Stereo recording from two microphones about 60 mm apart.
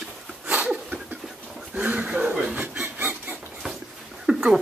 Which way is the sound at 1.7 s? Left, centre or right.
Right.